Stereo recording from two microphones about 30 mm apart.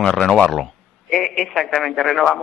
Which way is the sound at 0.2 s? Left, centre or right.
Left.